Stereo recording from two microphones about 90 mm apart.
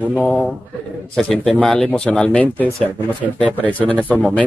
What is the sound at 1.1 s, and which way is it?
Speech, 5° left (ahead or behind).